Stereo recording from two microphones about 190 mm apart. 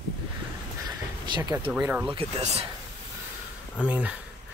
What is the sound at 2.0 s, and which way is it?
Speech, 30° right (ahead or behind).